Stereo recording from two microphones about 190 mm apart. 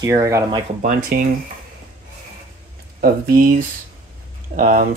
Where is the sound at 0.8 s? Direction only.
50° right (ahead or behind).